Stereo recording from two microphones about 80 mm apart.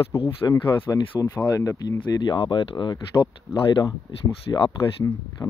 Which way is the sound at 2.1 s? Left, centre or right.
Left.